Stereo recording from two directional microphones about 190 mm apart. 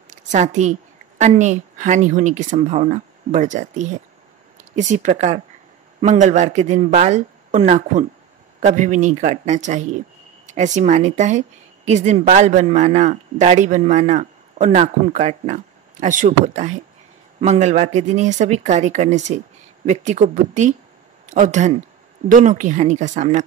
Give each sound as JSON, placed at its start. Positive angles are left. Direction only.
{"t": 0.1, "sound": "a woman's voice", "side_deg": -40}